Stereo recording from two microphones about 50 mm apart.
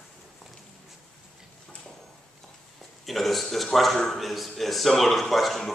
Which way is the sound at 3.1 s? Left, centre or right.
Centre.